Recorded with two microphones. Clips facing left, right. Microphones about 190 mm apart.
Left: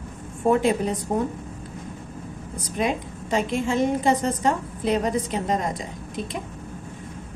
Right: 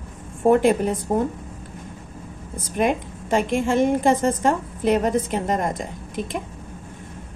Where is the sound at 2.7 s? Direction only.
55° right (ahead or behind).